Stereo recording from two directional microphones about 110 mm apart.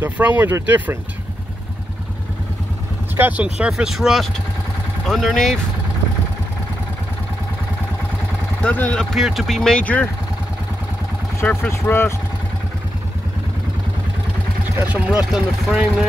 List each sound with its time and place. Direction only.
0.0 s speech: 15° right (ahead or behind)
3.2 s speech: 15° right (ahead or behind); by 5.6 s centre (ahead or behind)
8.6 s speech: 15° left (ahead or behind)
9.1 s speech: centre (ahead or behind)
11.7 s speech: 20° left (ahead or behind)
14.8 s speech: 10° right (ahead or behind)